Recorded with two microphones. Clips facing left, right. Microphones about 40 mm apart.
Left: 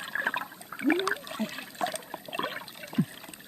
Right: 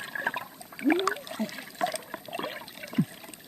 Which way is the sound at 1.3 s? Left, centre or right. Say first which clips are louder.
Even; left.